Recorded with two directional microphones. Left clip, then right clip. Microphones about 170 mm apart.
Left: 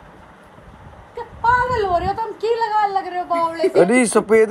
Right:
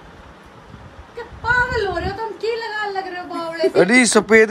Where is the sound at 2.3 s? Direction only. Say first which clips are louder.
Left 7 dB; 45° left (ahead or behind).